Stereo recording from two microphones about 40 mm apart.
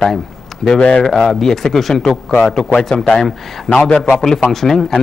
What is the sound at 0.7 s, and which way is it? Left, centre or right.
Speech, left.